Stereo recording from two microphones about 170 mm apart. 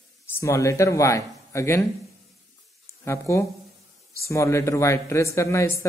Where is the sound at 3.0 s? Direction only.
15° left (ahead or behind).